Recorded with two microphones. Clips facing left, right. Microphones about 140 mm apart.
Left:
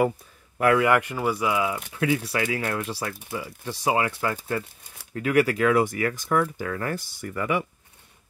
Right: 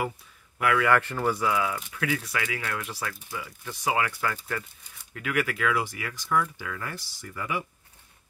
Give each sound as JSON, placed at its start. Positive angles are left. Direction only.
{"t": 0.7, "sound": "speech", "side_deg": 15}
{"t": 2.0, "sound": "speech", "side_deg": 30}
{"t": 5.1, "sound": "speech", "side_deg": 35}